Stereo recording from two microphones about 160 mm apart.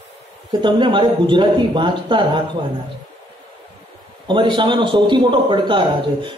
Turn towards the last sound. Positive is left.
turn(degrees=-30)  # may be behind; listen again after turning